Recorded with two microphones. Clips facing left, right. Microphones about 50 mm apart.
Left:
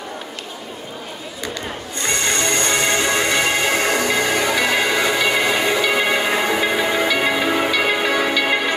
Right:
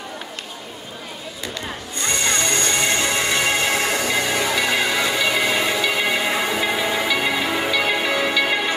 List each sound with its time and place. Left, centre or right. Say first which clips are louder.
2.0 s music: left 2 dB; centre